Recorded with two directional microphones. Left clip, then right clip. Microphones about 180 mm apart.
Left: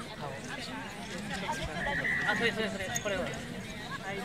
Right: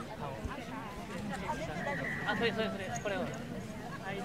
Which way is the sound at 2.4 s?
45° left (ahead or behind).